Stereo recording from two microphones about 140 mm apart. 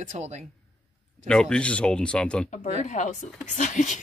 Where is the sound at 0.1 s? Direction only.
55° right (ahead or behind).